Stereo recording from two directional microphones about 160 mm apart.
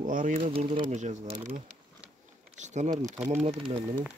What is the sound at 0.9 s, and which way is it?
Speech, 45° right (ahead or behind).